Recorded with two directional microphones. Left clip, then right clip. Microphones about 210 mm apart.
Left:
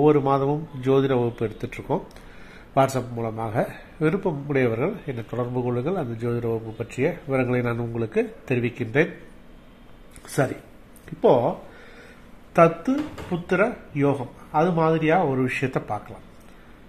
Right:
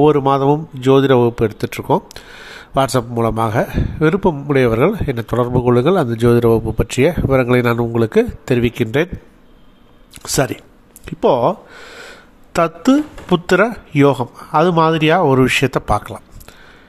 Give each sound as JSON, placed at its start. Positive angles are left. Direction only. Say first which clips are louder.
{"t": 0.0, "sound": "speech", "louder": "right 7 dB", "side_deg": -30}
{"t": 10.2, "sound": "speech", "louder": "right 7 dB", "side_deg": -30}